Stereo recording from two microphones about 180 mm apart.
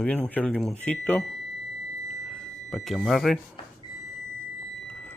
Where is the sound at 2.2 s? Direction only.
Centre (ahead or behind).